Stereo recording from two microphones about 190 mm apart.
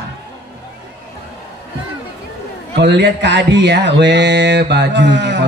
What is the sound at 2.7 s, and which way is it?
Speech, 65° right (ahead or behind).